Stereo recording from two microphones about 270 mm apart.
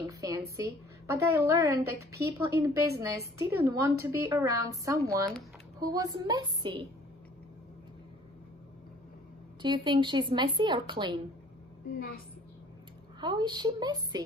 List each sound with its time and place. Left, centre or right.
0.0 s a woman's voice: centre
9.6 s a woman's voice: centre
13.2 s a woman's voice: centre